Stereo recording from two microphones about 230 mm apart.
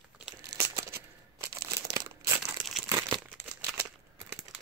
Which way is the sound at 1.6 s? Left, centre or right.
Centre.